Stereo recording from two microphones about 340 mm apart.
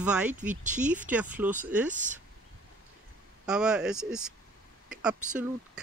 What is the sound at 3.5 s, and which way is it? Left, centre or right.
Speech, centre.